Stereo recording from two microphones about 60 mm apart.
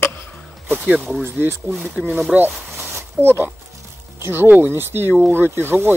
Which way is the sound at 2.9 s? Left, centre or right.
Right.